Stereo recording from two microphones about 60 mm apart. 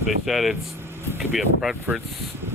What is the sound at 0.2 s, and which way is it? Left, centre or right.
Speech, centre.